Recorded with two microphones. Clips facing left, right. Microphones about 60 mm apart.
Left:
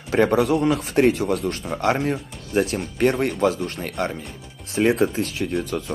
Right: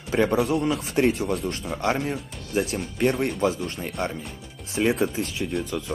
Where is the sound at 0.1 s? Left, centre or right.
Left.